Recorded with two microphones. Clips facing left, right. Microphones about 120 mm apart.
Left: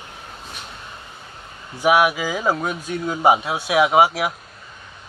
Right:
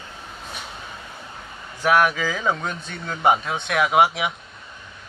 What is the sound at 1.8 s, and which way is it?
Speech, 10° left (ahead or behind).